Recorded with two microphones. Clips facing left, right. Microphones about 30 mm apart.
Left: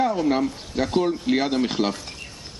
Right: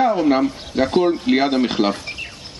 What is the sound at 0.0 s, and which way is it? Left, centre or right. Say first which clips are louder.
A man's voice: right 5 dB; right.